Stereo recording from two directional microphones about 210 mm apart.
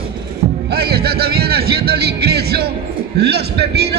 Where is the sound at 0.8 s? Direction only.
50° right (ahead or behind).